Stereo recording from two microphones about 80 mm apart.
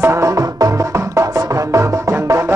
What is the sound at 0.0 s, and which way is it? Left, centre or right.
Music, right.